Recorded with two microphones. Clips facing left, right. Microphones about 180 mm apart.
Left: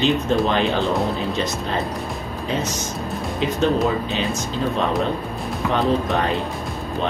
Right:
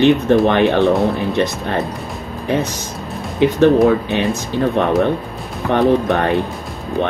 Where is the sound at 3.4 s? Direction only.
65° right (ahead or behind).